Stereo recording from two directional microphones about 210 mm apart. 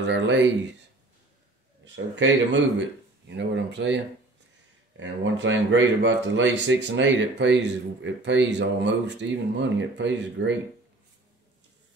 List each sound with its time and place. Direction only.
0.0 s speech: 55° right (ahead or behind)
2.1 s speech: 60° right (ahead or behind)